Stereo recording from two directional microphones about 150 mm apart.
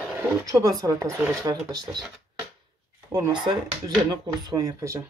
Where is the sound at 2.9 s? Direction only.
20° right (ahead or behind).